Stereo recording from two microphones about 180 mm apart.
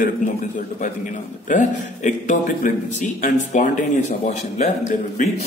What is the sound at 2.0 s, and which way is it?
Speech, 45° left (ahead or behind).